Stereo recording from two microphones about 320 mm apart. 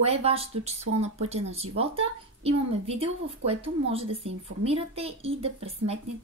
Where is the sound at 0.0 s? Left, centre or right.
Centre.